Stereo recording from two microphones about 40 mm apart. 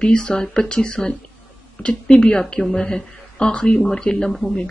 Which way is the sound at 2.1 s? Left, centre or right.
Left.